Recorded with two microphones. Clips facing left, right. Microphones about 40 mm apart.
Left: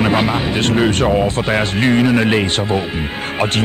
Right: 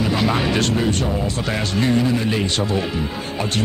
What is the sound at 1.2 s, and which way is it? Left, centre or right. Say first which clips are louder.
Speech: left 7 dB; left.